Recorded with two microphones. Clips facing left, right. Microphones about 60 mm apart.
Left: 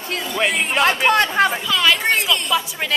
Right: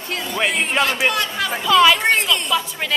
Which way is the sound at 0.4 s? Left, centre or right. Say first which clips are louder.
Even; centre.